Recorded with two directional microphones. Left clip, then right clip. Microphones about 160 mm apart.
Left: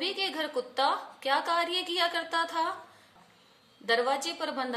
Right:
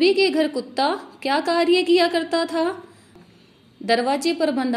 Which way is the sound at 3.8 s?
25° right (ahead or behind).